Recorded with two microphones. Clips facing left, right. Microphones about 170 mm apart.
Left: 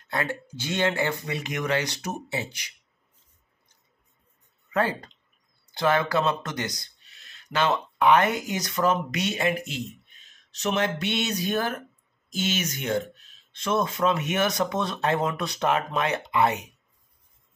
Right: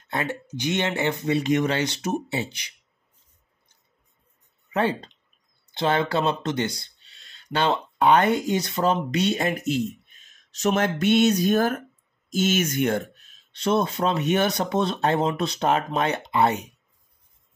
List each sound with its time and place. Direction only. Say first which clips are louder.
0.1 s speech: right 1 dB; 20° right (ahead or behind)
4.7 s speech: right 2 dB; 25° right (ahead or behind); by 13.0 s 50° right (ahead or behind)
13.6 s speech: right 2 dB; 30° right (ahead or behind)